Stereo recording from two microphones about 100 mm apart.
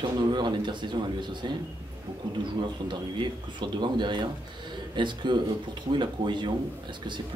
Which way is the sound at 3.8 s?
50° right (ahead or behind).